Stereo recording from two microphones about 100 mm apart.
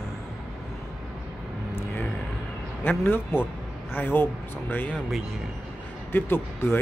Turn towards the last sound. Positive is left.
turn(degrees=20)  # may be behind; listen again after turning